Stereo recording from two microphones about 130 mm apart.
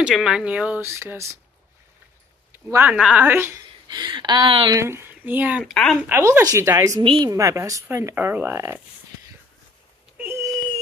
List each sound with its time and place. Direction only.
0.0 s speech: 5° right (ahead or behind)
0.8 s speech: 20° right (ahead or behind)
2.5 s a sound: 20° right (ahead or behind)
2.9 s speech: 10° right (ahead or behind)
3.9 s speech: 35° right (ahead or behind)
4.7 s speech: 20° right (ahead or behind)
5.6 s speech: 5° left (ahead or behind)
5.9 s speech: 15° right (ahead or behind)
7.0 s speech: 40° right (ahead or behind)
7.2 s speech: 25° right (ahead or behind)